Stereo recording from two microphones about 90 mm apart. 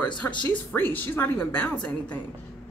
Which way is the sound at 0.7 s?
25° left (ahead or behind).